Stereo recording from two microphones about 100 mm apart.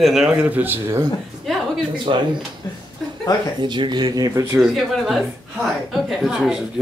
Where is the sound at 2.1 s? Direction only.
65° right (ahead or behind).